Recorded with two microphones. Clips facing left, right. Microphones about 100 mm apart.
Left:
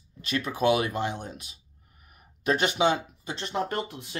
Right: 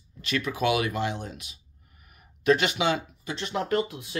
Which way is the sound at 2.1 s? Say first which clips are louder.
Right 4 dB; 35° left (ahead or behind).